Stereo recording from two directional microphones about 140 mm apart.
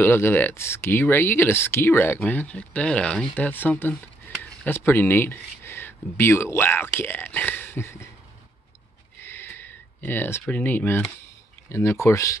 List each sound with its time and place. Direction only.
0.0 s speech: 15° left (ahead or behind)
9.2 s a sound: 15° left (ahead or behind)
10.4 s speech: 10° left (ahead or behind)